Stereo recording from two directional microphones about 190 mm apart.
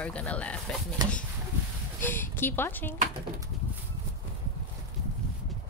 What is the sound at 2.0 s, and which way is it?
Speech, 10° left (ahead or behind).